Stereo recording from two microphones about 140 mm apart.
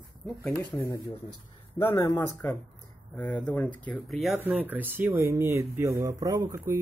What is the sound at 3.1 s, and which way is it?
Speech, 10° left (ahead or behind).